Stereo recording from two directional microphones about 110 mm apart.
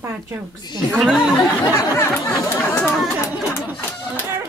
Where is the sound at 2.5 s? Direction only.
20° left (ahead or behind).